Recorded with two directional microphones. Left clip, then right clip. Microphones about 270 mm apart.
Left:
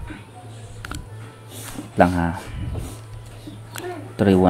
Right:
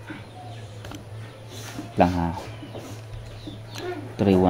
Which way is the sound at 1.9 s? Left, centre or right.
Centre.